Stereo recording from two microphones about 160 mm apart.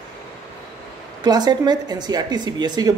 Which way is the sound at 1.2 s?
25° right (ahead or behind).